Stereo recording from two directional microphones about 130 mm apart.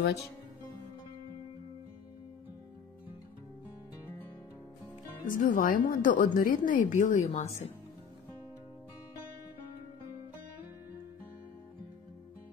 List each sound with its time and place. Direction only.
5.2 s a woman's voice: 90° left; by 7.4 s 70° left (ahead or behind)